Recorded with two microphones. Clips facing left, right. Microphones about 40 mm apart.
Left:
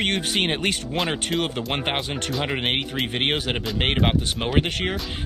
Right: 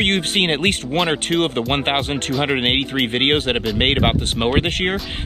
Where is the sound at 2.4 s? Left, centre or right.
Right.